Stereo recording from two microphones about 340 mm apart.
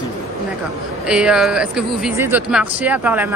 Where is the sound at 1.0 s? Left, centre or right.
Centre.